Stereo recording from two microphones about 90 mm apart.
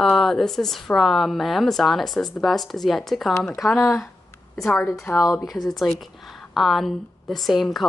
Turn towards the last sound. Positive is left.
turn(degrees=0)  # may be behind; listen again after turning